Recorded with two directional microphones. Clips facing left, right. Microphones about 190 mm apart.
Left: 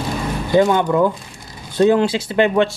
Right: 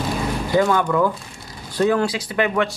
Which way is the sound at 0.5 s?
25° left (ahead or behind).